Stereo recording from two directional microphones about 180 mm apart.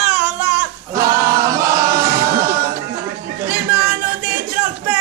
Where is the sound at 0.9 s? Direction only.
15° right (ahead or behind).